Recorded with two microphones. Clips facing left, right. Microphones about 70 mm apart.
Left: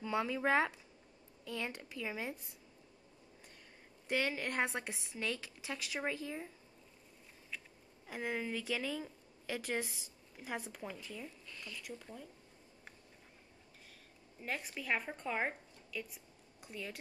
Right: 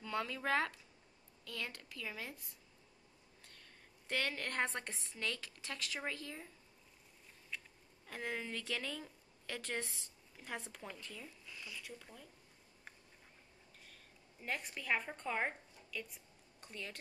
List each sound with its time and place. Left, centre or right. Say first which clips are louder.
0.0 s a woman's voice: left 5 dB; centre
4.1 s speech: left 4 dB; centre
7.5 s a sound: even; centre
8.1 s speech: left 4 dB; centre
11.4 s zipper: left 1 dB; centre
11.8 s speech: left 5 dB; centre
14.4 s a woman's voice: left 1 dB; centre